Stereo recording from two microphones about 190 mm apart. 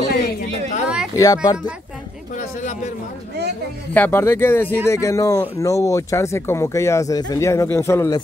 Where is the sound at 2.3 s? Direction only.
40° left (ahead or behind).